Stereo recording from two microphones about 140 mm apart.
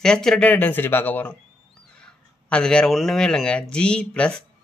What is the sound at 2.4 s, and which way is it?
Speech, 5° left (ahead or behind).